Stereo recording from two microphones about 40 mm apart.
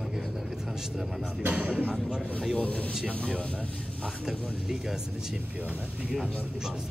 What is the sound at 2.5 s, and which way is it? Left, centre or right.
Speech, left.